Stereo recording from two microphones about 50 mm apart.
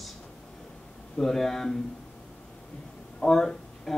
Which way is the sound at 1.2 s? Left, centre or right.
Centre.